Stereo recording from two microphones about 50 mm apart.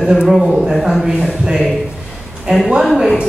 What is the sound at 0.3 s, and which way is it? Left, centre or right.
Speech, centre.